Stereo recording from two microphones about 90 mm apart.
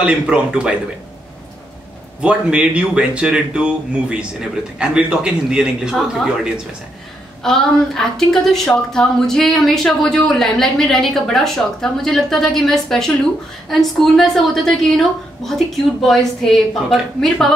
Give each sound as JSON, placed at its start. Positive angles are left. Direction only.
{"t": 0.0, "sound": "speech", "side_deg": -10}
{"t": 2.2, "sound": "a woman's voice", "side_deg": -15}
{"t": 7.4, "sound": "a woman's voice", "side_deg": 5}